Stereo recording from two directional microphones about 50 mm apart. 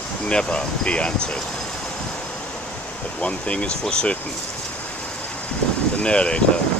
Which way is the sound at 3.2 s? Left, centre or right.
Left.